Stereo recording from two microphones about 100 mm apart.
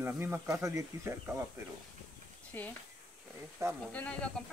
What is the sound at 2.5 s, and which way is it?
Speech, 20° left (ahead or behind).